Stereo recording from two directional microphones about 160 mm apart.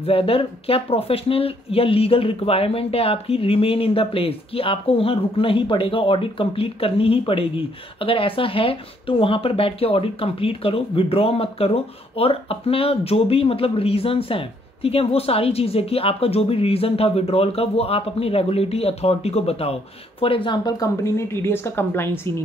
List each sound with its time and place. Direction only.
0.0 s speech: 35° left (ahead or behind); by 22.3 s 15° left (ahead or behind)